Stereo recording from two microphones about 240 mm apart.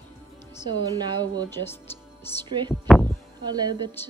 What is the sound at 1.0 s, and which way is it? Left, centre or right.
Speech, centre.